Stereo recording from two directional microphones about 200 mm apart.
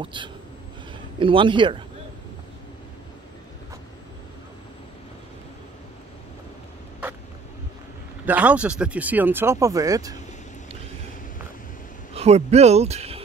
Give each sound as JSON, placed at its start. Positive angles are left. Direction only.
{"t": 0.0, "sound": "a man's voice", "side_deg": -25}
{"t": 8.3, "sound": "speech", "side_deg": -5}
{"t": 12.1, "sound": "speech", "side_deg": -30}